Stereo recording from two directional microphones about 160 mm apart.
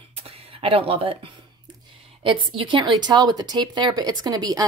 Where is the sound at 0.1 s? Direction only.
35° right (ahead or behind).